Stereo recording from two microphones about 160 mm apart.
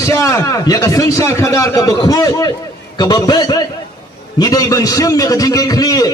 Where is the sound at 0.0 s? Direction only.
20° left (ahead or behind).